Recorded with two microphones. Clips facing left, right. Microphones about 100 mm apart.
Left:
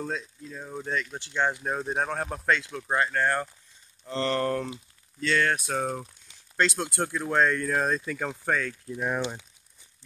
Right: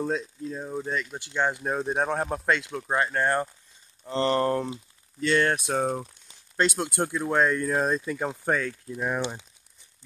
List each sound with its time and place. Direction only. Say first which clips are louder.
0.0 s speech: right 5 dB; 25° right (ahead or behind)
0.7 s speech: left 2 dB; 10° right (ahead or behind)
8.8 s speech: right 1 dB; centre (ahead or behind)